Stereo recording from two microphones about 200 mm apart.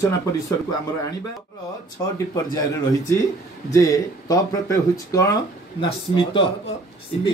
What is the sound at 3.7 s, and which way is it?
A man's voice, 15° left (ahead or behind).